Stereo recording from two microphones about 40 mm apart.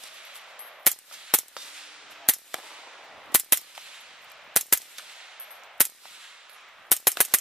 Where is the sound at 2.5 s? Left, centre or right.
Centre.